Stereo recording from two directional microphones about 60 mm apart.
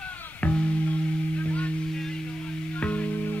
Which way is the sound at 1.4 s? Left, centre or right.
Left.